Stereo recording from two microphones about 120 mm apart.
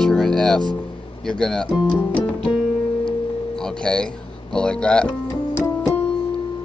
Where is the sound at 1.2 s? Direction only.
5° left (ahead or behind).